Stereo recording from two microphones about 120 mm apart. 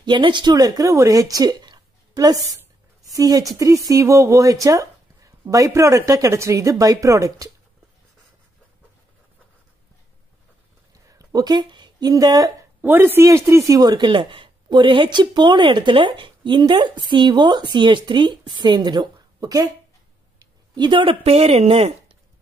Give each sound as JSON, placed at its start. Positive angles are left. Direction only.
{"t": 0.0, "sound": "speech", "side_deg": -40}
{"t": 11.1, "sound": "speech", "side_deg": -30}
{"t": 12.8, "sound": "speech", "side_deg": -15}